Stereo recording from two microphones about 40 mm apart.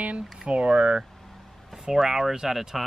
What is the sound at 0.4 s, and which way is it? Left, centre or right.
Speech, right.